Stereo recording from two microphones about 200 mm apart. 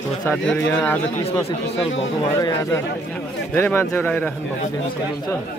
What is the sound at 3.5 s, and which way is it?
Speech, 10° left (ahead or behind).